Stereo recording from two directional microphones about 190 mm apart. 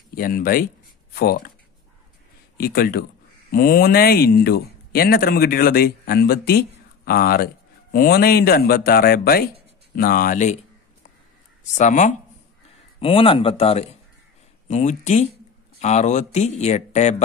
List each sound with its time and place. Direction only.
0.1 s speech: 50° left (ahead or behind)
2.5 s speech: 50° left (ahead or behind)
11.7 s speech: 40° left (ahead or behind)
13.0 s speech: 30° left (ahead or behind)